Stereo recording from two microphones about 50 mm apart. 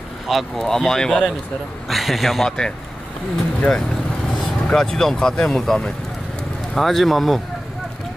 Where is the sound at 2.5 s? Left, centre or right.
Centre.